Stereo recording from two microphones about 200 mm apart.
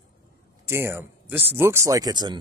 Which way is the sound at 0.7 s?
10° right (ahead or behind).